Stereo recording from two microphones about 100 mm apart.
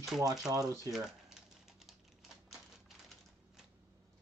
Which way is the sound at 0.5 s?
35° right (ahead or behind).